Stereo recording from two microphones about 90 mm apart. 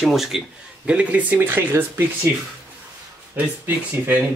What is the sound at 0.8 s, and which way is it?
Speech, 15° right (ahead or behind).